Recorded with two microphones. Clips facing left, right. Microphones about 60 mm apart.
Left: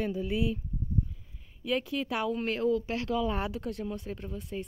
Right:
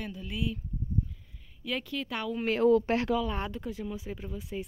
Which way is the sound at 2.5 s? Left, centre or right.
Right.